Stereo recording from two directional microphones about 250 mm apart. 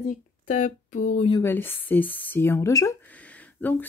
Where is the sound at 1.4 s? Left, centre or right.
Centre.